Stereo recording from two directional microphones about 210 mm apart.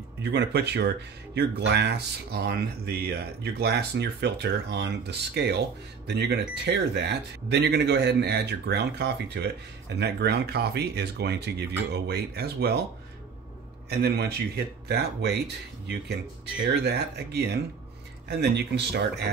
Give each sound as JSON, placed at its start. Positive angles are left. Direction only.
{"t": 0.2, "sound": "speech", "side_deg": -55}
{"t": 13.8, "sound": "speech", "side_deg": -50}